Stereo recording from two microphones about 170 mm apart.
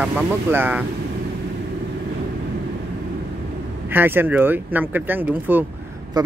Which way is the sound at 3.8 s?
10° right (ahead or behind).